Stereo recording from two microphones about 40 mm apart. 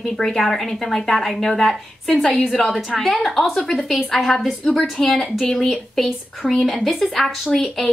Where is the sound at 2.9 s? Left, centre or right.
Centre.